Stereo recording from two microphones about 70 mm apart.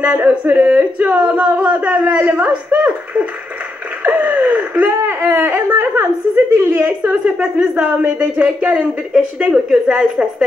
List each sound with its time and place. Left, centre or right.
0.0 s a woman's voice: right
6.8 s speech: right
9.1 s a woman's voice: centre